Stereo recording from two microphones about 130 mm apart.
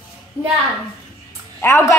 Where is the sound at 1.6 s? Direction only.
15° left (ahead or behind).